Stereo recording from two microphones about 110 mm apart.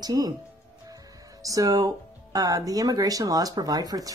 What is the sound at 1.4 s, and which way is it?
Speech, 35° right (ahead or behind).